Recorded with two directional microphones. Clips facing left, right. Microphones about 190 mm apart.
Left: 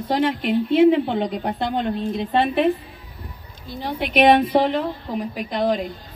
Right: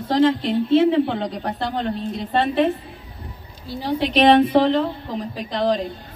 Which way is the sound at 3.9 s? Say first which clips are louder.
Right 1 dB; 10° left (ahead or behind).